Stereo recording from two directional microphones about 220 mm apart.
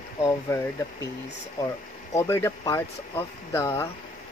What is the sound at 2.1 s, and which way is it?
Speech, 10° left (ahead or behind).